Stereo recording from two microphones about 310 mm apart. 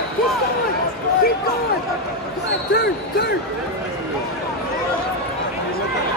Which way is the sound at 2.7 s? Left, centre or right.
Left.